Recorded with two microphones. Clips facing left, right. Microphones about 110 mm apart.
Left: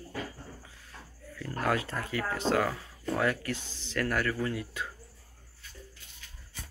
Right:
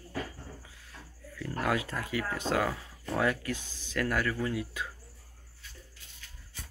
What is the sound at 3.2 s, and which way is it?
Speech, 20° right (ahead or behind).